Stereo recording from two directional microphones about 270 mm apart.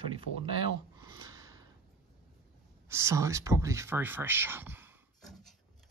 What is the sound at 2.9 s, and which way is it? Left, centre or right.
Speech, centre.